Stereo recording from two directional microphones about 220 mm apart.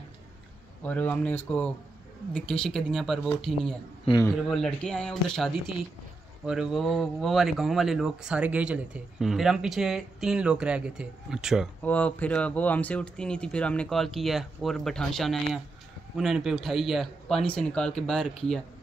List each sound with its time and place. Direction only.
0.8 s speech: 5° left (ahead or behind)
4.0 s a man's voice: 20° left (ahead or behind)
4.3 s speech: centre (ahead or behind)